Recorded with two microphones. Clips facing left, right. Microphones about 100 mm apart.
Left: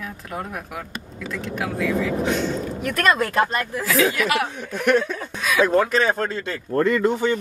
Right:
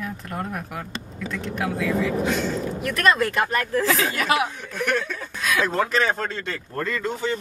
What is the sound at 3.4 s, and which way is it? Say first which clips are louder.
Speech: right 2 dB; 20° left (ahead or behind).